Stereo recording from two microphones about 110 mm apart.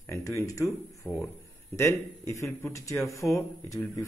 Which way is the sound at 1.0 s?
15° left (ahead or behind).